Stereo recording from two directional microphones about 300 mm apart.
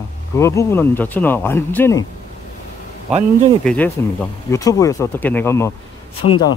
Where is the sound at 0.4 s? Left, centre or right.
Centre.